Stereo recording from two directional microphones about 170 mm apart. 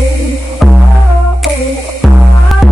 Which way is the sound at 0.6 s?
Centre (ahead or behind).